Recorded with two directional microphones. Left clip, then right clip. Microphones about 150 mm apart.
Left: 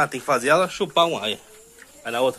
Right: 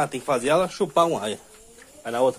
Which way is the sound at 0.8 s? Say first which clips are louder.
Left 1 dB; 35° right (ahead or behind).